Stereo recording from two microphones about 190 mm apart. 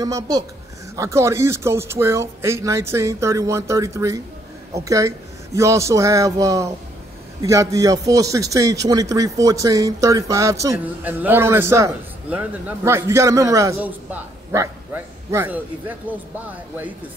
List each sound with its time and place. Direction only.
0.0 s a woman's voice: 20° right (ahead or behind)
14.5 s a sound: 15° right (ahead or behind)
16.1 s a man's voice: 10° right (ahead or behind)